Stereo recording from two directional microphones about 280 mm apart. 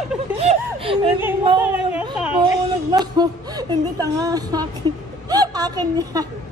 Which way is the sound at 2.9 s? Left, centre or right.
Centre.